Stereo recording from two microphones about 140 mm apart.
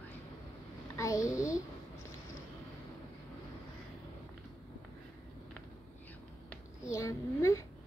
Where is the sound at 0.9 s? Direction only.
25° left (ahead or behind).